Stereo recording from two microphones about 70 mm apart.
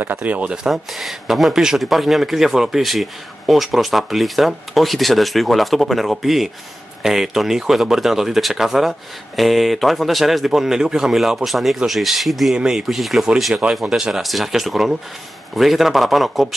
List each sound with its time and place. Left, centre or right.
0.0 s speech: right
0.7 s speech: centre